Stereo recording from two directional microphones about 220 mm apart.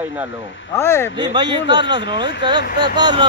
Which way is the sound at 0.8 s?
10° left (ahead or behind).